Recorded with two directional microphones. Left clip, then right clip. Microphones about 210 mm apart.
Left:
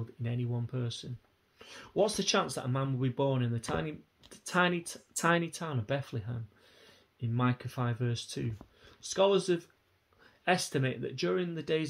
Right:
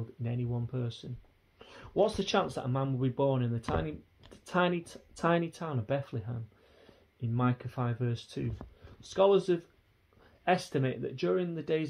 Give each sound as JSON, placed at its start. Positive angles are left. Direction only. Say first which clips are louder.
{"t": 0.2, "sound": "speech", "louder": "right 1 dB", "side_deg": 25}